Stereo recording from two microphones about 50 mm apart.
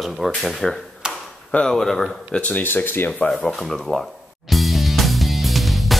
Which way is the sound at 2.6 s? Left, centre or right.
Left.